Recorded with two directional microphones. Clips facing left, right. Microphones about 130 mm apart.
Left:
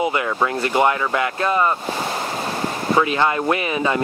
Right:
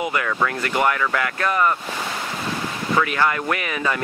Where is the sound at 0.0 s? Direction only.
25° left (ahead or behind).